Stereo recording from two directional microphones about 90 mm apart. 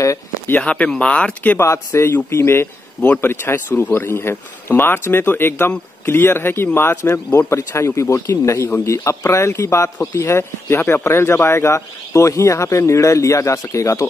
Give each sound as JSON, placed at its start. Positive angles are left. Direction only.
{"t": 0.6, "sound": "speech", "side_deg": 10}
{"t": 1.6, "sound": "a man's voice", "side_deg": 30}